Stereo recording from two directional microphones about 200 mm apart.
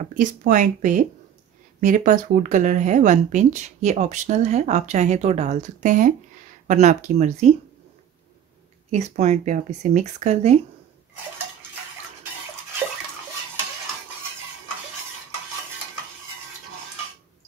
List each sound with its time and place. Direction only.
0.0 s speech: 40° right (ahead or behind)
8.9 s speech: 35° right (ahead or behind)